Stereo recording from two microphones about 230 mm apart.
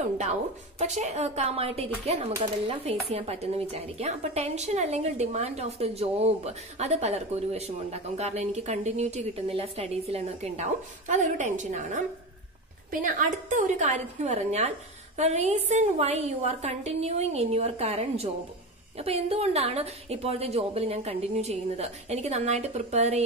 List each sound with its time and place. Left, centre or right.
0.2 s a woman's voice: right